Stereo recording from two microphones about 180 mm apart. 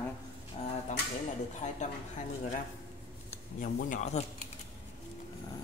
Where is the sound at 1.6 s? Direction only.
40° left (ahead or behind).